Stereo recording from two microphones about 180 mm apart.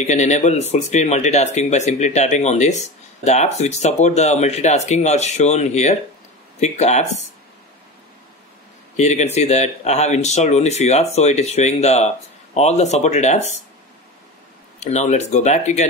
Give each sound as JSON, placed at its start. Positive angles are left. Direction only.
{"t": 0.0, "sound": "speech", "side_deg": 40}
{"t": 8.9, "sound": "speech", "side_deg": 40}
{"t": 14.8, "sound": "speech", "side_deg": 40}